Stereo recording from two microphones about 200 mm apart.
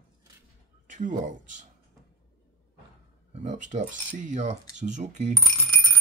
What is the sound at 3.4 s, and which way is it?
Speech, 40° right (ahead or behind).